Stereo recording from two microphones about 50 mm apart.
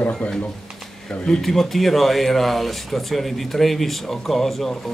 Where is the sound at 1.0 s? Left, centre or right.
Centre.